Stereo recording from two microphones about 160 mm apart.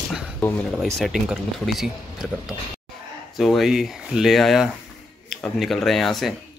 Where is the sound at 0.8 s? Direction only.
Centre (ahead or behind).